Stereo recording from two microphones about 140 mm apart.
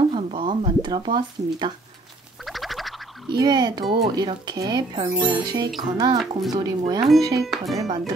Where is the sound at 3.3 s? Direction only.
30° right (ahead or behind).